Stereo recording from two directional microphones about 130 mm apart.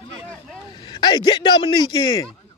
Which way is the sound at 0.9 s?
35° left (ahead or behind).